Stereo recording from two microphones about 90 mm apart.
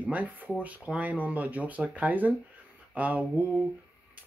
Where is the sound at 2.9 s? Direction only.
15° right (ahead or behind).